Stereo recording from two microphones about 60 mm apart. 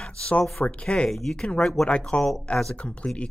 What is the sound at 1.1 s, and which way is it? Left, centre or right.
Speech, centre.